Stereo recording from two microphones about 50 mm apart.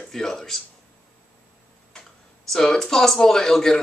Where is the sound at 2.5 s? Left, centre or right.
Centre.